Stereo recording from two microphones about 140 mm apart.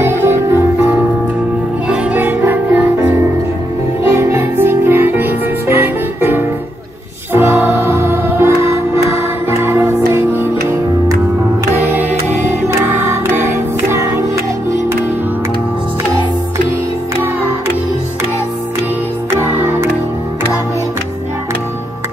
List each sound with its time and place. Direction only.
0.0 s music: 15° right (ahead or behind)
4.0 s music: 20° right (ahead or behind)
12.6 s music: 15° right (ahead or behind)
19.3 s music: 20° right (ahead or behind)